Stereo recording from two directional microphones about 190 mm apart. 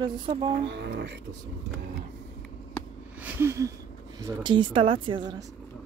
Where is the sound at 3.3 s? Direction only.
15° right (ahead or behind).